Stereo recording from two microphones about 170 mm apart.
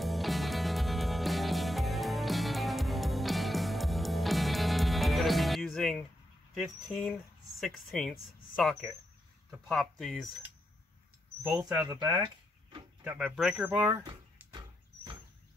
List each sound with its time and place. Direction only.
0.0 s music: centre (ahead or behind)
6.5 s speech: centre (ahead or behind)
11.4 s speech: 15° right (ahead or behind)
13.0 s speech: 10° right (ahead or behind)